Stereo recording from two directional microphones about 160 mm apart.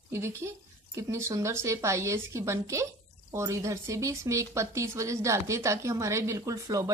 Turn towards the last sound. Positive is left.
turn(degrees=-20)  # may be behind; listen again after turning